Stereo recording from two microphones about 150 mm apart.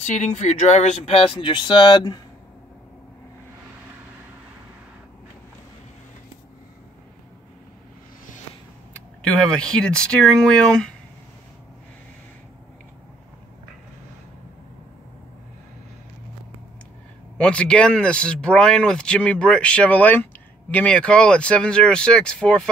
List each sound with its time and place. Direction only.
0.0 s speech: 50° left (ahead or behind); by 2.1 s 30° left (ahead or behind)
8.9 s speech: 5° left (ahead or behind)
17.4 s speech: 5° left (ahead or behind)